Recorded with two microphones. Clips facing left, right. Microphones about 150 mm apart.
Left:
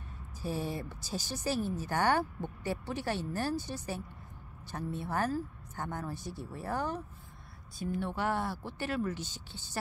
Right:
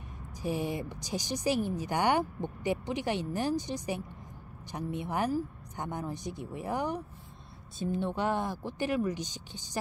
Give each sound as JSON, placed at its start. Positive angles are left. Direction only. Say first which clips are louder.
{"t": 0.4, "sound": "speech", "louder": "right 3 dB", "side_deg": -15}